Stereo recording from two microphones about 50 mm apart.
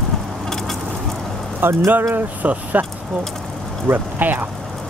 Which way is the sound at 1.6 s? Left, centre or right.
Right.